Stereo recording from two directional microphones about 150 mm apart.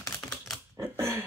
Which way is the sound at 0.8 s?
15° right (ahead or behind).